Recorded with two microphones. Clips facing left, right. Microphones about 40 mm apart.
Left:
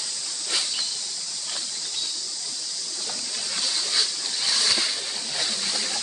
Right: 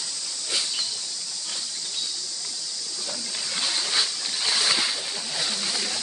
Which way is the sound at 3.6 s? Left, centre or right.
Right.